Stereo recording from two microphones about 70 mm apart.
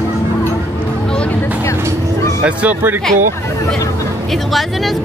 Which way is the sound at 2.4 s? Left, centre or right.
Right.